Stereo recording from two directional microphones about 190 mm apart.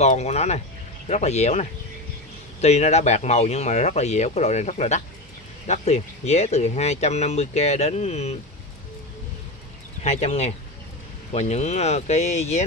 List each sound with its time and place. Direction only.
0.0 s speech: 35° left (ahead or behind)
10.0 s speech: 35° left (ahead or behind)